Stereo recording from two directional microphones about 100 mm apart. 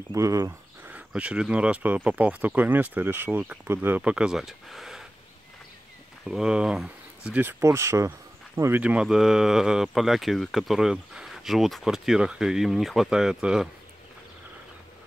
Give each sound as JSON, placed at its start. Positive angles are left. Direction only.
{"t": 0.1, "sound": "speech", "side_deg": -30}
{"t": 0.8, "sound": "speech", "side_deg": -15}
{"t": 6.2, "sound": "speech", "side_deg": -5}
{"t": 7.3, "sound": "speech", "side_deg": -25}
{"t": 8.8, "sound": "speech", "side_deg": -10}